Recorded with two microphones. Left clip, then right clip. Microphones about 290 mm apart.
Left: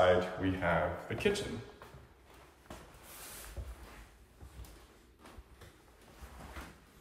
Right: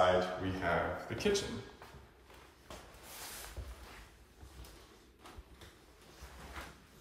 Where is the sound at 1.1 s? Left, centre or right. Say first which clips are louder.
Left 2 dB; centre.